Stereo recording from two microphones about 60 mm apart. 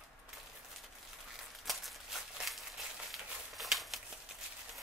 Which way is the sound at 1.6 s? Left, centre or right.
Centre.